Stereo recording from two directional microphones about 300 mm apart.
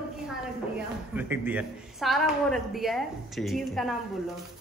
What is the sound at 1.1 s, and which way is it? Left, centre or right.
Speech, centre.